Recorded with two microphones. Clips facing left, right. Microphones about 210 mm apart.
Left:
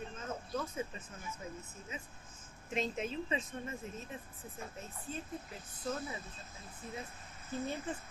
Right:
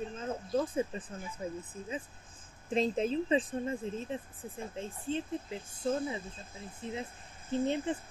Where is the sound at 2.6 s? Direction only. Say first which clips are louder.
Right 7 dB; 35° right (ahead or behind).